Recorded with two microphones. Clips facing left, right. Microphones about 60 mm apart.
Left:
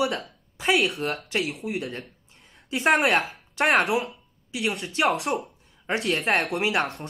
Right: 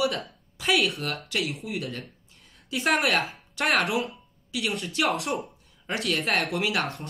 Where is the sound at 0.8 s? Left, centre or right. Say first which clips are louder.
Left 3 dB; centre.